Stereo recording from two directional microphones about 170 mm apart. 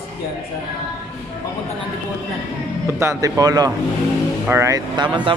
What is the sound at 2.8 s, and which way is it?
Speech, 15° right (ahead or behind).